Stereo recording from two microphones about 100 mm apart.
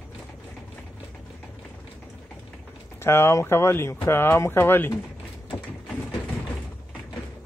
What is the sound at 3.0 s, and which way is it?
Speech, 25° left (ahead or behind).